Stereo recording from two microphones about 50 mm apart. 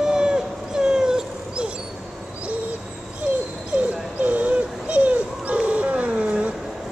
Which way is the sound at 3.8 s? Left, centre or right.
Right.